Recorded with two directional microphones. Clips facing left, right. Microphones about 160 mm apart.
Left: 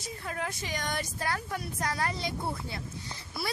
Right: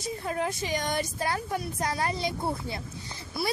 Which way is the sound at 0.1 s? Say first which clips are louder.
Right 6 dB; 25° right (ahead or behind).